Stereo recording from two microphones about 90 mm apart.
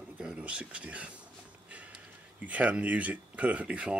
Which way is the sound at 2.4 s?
15° right (ahead or behind).